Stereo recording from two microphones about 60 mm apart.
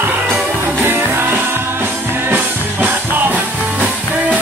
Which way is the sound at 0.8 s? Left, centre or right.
Right.